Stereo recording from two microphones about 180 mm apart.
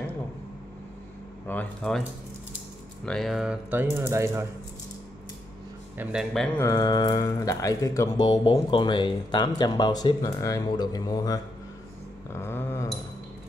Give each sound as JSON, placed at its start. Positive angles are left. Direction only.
{"t": 1.5, "sound": "speech", "side_deg": 5}
{"t": 3.1, "sound": "speech", "side_deg": 0}
{"t": 3.9, "sound": "speech", "side_deg": -15}
{"t": 5.9, "sound": "speech", "side_deg": 0}
{"t": 6.6, "sound": "speech", "side_deg": 20}
{"t": 12.3, "sound": "a sound", "side_deg": 15}